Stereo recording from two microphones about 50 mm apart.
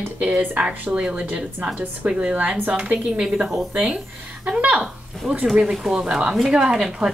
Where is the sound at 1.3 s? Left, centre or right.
Centre.